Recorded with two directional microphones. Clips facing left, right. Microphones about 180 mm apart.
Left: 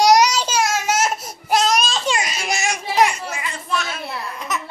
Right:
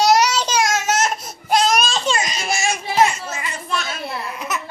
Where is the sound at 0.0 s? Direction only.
15° left (ahead or behind).